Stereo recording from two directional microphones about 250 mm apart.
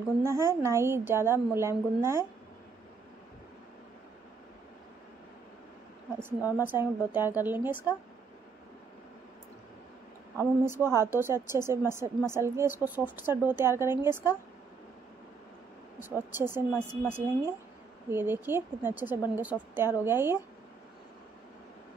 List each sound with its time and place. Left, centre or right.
0.2 s a woman's voice: centre
6.2 s a woman's voice: centre
10.3 s a woman's voice: centre
16.0 s a woman's voice: centre